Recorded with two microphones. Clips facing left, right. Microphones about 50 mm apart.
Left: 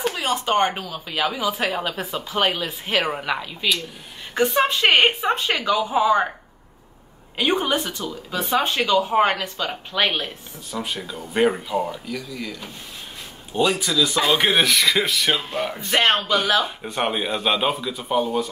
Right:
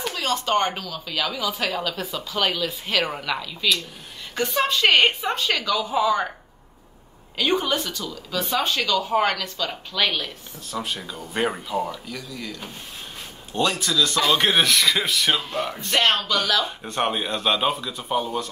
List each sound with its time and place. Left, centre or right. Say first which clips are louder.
0.0 s speech: left 2 dB; left
7.3 s speech: left 1 dB; left
10.7 s speech: left 1 dB; centre
16.0 s speech: left 2 dB; left
16.8 s speech: left 1 dB; centre